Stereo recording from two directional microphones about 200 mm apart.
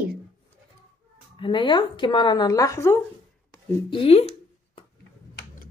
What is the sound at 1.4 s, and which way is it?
Speech, 25° left (ahead or behind).